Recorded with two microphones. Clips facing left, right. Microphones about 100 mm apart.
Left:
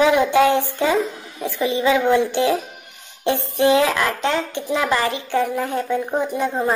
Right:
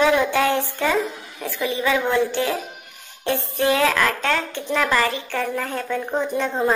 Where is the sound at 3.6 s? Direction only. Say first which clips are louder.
Left 2 dB; 15° left (ahead or behind).